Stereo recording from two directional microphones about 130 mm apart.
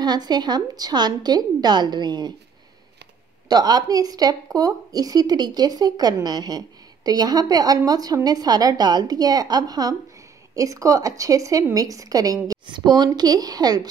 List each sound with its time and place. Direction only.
0.0 s a woman's voice: 30° right (ahead or behind)
3.4 s a woman's voice: 30° right (ahead or behind)